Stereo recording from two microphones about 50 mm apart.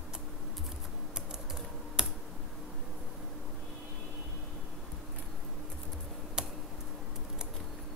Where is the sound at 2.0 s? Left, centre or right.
Centre.